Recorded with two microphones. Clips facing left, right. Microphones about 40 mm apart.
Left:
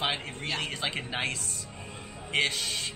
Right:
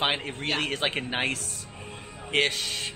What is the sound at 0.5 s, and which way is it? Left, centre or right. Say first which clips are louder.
Speech: right 5 dB; right.